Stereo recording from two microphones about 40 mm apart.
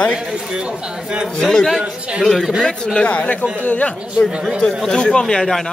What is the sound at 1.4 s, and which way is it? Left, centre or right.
Speech, centre.